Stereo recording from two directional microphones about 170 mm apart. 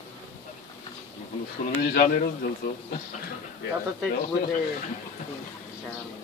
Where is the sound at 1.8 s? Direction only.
60° left (ahead or behind).